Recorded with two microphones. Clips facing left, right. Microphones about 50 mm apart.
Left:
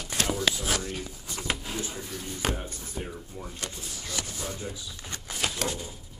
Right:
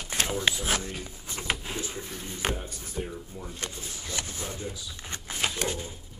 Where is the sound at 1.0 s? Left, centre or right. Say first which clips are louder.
Even; right.